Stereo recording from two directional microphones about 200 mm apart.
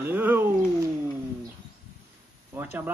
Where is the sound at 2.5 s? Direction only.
10° right (ahead or behind).